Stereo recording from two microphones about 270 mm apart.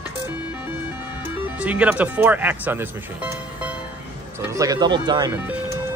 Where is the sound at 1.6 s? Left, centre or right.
Centre.